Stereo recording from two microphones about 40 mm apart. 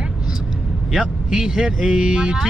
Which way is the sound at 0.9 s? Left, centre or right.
Centre.